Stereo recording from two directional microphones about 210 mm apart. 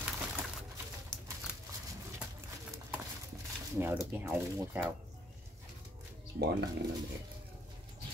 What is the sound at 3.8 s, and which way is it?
Speech, 10° right (ahead or behind).